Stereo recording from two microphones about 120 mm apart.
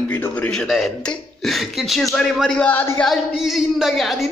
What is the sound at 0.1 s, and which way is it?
A woman's voice, 15° left (ahead or behind).